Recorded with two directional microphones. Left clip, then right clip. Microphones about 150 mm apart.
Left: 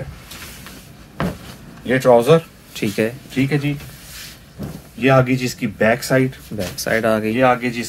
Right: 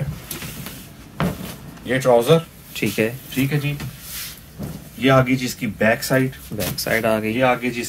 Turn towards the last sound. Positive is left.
turn(degrees=25)  # may be behind; listen again after turning